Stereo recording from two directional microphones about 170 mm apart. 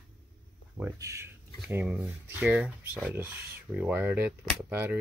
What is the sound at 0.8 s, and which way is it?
Speech, 15° right (ahead or behind).